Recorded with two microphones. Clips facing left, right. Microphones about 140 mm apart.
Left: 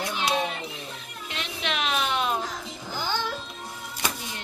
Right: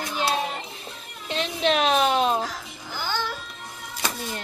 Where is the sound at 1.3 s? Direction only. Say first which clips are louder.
Right 9 dB; 35° right (ahead or behind).